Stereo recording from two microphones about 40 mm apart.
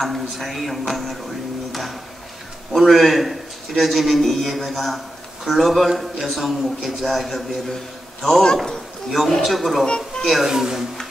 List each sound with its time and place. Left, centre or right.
0.0 s a man's voice: centre
1.7 s a sound: centre
2.7 s a man's voice: centre
8.2 s speech: centre
8.6 s speech: centre
9.8 s speech: left
10.2 s speech: centre